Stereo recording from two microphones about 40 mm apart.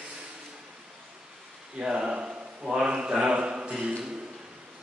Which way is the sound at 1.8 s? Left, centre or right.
Right.